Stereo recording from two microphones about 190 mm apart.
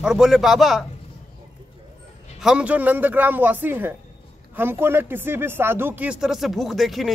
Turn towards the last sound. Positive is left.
turn(degrees=0)  # may be behind; listen again after turning